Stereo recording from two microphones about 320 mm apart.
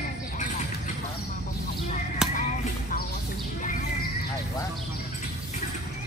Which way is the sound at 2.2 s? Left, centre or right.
Centre.